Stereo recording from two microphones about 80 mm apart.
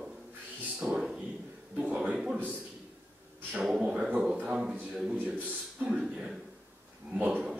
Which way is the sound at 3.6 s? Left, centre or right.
Centre.